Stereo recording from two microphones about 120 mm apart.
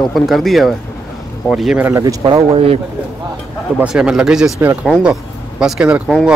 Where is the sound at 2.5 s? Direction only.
55° right (ahead or behind).